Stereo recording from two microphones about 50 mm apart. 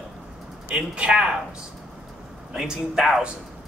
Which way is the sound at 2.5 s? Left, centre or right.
Centre.